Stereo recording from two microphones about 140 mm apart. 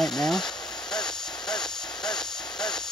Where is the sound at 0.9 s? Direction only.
5° left (ahead or behind).